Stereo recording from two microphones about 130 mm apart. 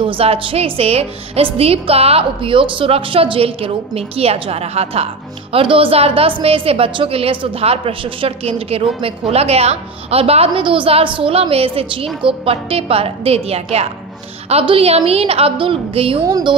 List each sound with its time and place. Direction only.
0.0 s a woman's voice: 45° right (ahead or behind)
16.3 s a woman's voice: 30° right (ahead or behind)